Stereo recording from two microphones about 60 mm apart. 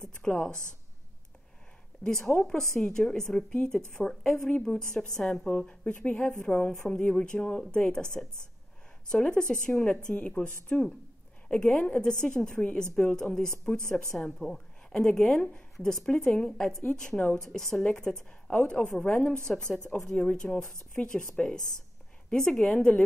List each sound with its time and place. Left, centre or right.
0.2 s a woman's voice: centre
2.0 s a woman's voice: centre
18.5 s a woman's voice: centre